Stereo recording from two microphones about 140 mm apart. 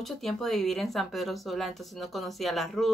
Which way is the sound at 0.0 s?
Centre (ahead or behind).